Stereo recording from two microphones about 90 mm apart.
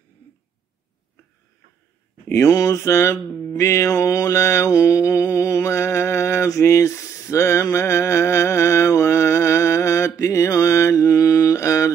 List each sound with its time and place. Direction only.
2.2 s speech: 25° left (ahead or behind)
2.5 s mantra: 35° left (ahead or behind)